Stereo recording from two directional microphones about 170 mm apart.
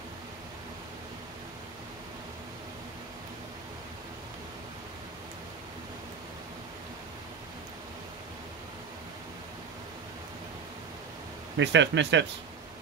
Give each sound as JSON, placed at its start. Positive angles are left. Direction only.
{"t": 11.5, "sound": "speech", "side_deg": -90}